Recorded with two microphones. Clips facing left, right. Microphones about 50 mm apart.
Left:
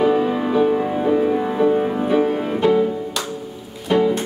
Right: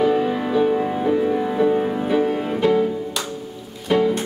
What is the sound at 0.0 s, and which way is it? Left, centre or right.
Music, centre.